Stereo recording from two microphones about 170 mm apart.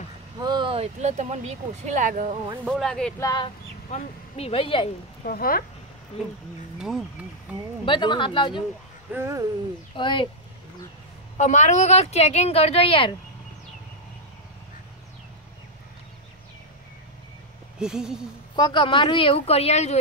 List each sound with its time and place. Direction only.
0.4 s speech: 25° right (ahead or behind); by 2.3 s 45° right (ahead or behind)
2.7 s speech: 5° left (ahead or behind)
3.2 s speech: 25° left (ahead or behind)
3.9 s speech: 35° left (ahead or behind)
5.2 s speech: 60° left (ahead or behind)
6.1 s speech: 35° left (ahead or behind)
6.8 s speech: centre (ahead or behind)
7.8 s speech: 30° left (ahead or behind)
9.1 s speech: 15° right (ahead or behind)
9.9 s speech: 30° left (ahead or behind)
11.3 s speech: 45° left (ahead or behind)
17.7 s speech: 5° right (ahead or behind)
18.6 s speech: 25° left (ahead or behind)